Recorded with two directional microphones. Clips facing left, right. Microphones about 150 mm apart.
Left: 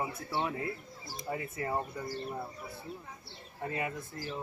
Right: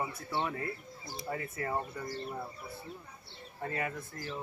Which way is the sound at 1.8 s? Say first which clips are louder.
Left 1 dB; 5° left (ahead or behind).